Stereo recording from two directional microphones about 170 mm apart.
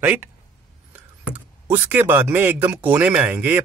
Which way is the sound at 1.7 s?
10° right (ahead or behind).